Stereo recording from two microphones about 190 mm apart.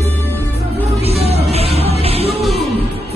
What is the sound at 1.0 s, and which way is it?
Music, 35° right (ahead or behind).